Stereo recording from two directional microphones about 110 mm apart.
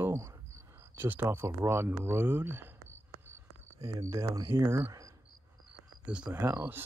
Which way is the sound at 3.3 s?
20° right (ahead or behind).